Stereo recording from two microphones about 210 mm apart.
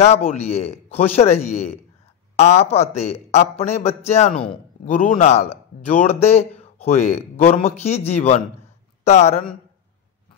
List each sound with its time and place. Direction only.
0.0 s a man's voice: 30° left (ahead or behind)